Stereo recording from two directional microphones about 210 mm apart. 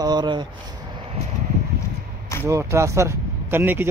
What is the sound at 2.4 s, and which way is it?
Speech, 15° right (ahead or behind).